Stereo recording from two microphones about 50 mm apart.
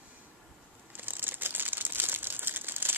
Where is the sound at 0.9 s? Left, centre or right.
Right.